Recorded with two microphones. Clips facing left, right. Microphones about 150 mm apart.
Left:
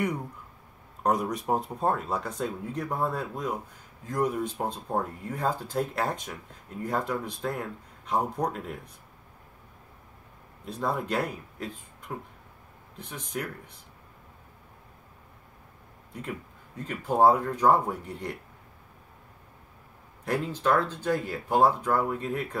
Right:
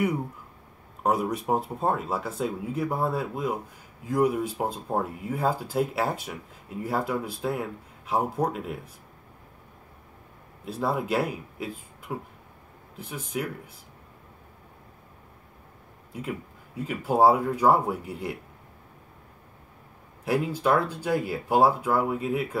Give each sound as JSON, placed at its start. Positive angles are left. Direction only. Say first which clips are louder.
{"t": 1.0, "sound": "speech", "louder": "right 1 dB", "side_deg": -5}
{"t": 10.6, "sound": "speech", "louder": "right 2 dB", "side_deg": -5}
{"t": 16.1, "sound": "speech", "louder": "right 3 dB", "side_deg": -5}
{"t": 20.2, "sound": "speech", "louder": "right 2 dB", "side_deg": -10}